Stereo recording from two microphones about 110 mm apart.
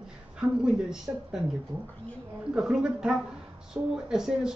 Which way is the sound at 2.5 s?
5° right (ahead or behind).